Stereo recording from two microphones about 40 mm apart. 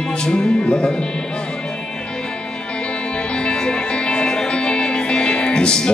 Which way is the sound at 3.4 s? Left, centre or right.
Left.